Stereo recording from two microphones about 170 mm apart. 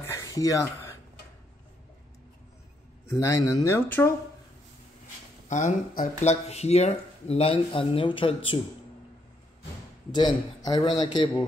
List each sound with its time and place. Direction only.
0.0 s a sound: 15° left (ahead or behind)
3.1 s speech: 15° left (ahead or behind)
5.5 s speech: 45° left (ahead or behind)
10.1 s a man's voice: 25° left (ahead or behind)